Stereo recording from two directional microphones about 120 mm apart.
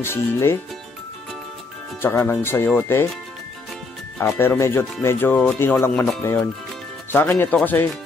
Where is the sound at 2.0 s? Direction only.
20° left (ahead or behind).